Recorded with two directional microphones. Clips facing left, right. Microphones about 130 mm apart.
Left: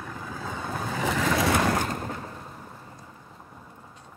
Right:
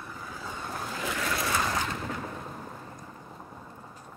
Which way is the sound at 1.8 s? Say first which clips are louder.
Left 3 dB; 45° left (ahead or behind).